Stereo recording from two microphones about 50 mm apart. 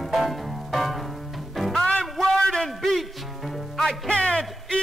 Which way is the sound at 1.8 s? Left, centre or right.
Left.